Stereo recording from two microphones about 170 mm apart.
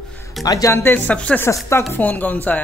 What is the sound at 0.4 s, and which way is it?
Speech, 20° left (ahead or behind).